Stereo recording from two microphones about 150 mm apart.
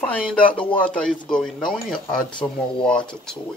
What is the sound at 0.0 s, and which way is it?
Speech, 10° left (ahead or behind).